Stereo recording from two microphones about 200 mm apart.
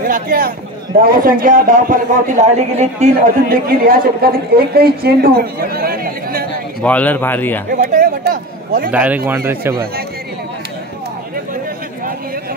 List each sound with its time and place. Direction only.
0.0 s a man's voice: 45° right (ahead or behind)
6.8 s a man's voice: 5° left (ahead or behind)
7.7 s a man's voice: 45° right (ahead or behind)
8.9 s speech: 10° right (ahead or behind)